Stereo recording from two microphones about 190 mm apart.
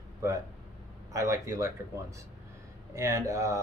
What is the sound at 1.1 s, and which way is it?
Speech, 15° right (ahead or behind).